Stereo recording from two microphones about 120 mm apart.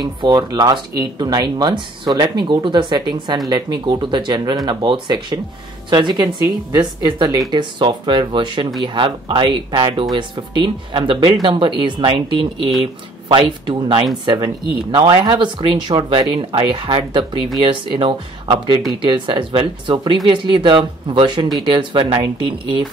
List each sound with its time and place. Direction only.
0.0 s speech: 35° right (ahead or behind)